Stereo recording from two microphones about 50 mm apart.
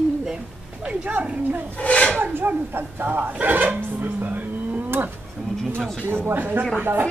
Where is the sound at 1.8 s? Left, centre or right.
Left.